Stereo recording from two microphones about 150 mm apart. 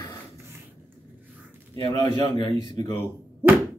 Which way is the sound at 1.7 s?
35° right (ahead or behind).